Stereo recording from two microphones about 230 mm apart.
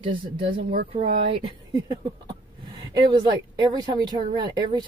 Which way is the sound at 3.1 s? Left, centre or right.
Centre.